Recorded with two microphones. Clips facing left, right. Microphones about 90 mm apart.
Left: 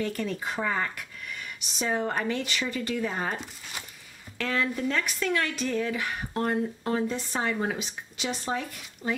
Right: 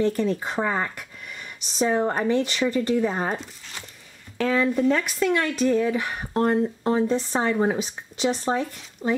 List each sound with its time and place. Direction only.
0.0 s speech: 25° right (ahead or behind)
3.3 s speech: 5° left (ahead or behind)
4.4 s speech: 20° right (ahead or behind)